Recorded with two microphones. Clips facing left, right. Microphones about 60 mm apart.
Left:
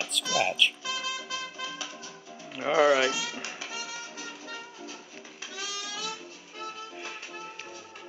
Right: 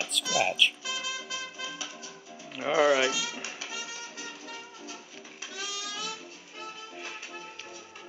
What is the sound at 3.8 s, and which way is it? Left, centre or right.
Music, left.